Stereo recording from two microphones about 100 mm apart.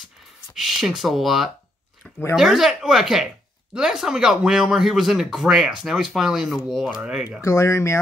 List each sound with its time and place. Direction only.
0.6 s speech: centre (ahead or behind)
7.4 s speech: 30° left (ahead or behind)